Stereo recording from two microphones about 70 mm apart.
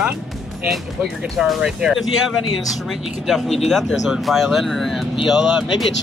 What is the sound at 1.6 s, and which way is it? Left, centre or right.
Speech, centre.